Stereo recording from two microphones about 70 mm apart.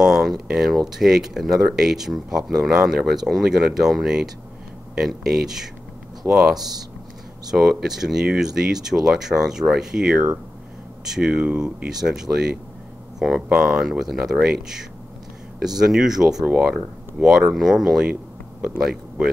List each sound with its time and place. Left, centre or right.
0.0 s speech: centre
11.1 s speech: centre
15.6 s speech: centre
16.4 s speech: centre
16.7 s speech: centre